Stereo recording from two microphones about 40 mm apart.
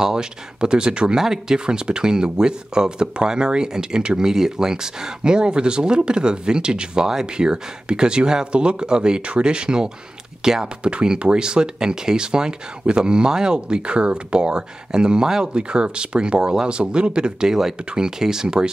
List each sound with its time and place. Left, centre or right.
0.0 s speech: centre
10.8 s speech: right